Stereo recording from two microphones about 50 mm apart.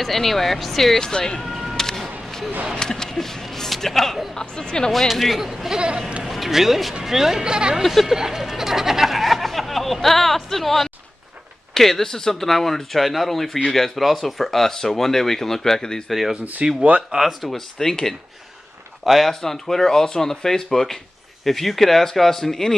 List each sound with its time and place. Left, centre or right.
0.0 s speech: centre
1.4 s a sound: centre
1.8 s a sound: centre
2.7 s speech: centre
4.9 s speech: centre
6.2 s speech: centre
7.8 s speech: centre
16.1 s speech: centre
16.6 s speech: right
17.1 s speech: centre